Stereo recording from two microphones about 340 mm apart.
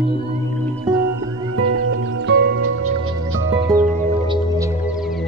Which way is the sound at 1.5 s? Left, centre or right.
Right.